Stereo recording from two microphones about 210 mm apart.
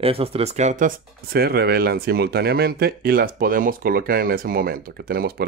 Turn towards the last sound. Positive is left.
turn(degrees=-45)  # may be behind; listen again after turning